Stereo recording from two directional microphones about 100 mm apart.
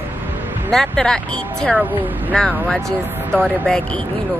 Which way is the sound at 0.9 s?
10° left (ahead or behind).